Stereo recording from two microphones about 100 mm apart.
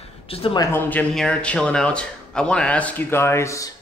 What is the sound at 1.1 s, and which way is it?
Speech, 5° left (ahead or behind).